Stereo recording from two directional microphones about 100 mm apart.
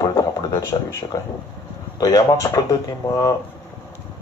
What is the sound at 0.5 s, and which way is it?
Speech, 30° left (ahead or behind).